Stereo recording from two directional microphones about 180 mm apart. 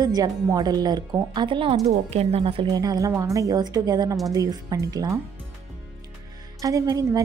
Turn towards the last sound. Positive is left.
turn(degrees=-20)  # may be behind; listen again after turning